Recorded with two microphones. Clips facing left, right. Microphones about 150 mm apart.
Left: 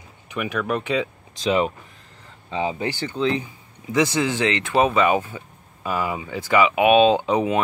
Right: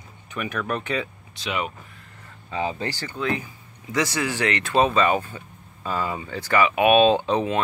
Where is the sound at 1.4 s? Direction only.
35° left (ahead or behind).